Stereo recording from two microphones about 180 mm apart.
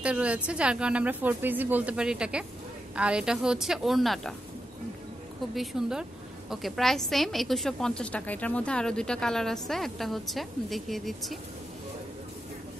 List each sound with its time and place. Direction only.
0.0 s a woman's voice: 5° right (ahead or behind)
5.5 s a woman's voice: centre (ahead or behind)